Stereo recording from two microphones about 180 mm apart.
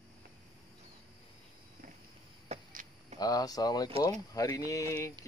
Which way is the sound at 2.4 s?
45° right (ahead or behind).